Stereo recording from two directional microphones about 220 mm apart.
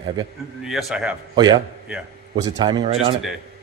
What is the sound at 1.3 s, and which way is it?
Speech, 20° right (ahead or behind).